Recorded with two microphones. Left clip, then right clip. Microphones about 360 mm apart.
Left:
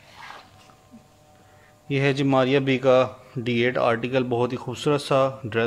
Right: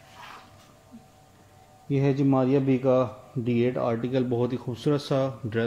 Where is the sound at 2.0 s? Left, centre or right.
Left.